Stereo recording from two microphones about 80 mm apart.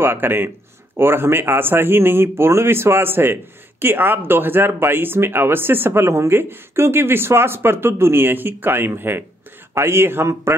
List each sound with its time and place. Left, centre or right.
0.0 s speech: right